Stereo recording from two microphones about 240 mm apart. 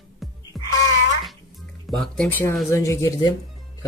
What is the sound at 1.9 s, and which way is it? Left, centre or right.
Speech, centre.